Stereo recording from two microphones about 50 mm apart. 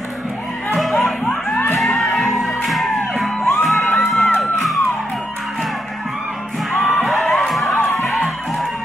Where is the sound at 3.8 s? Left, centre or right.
Left.